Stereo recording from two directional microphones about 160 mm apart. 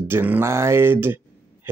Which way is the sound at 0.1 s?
10° right (ahead or behind).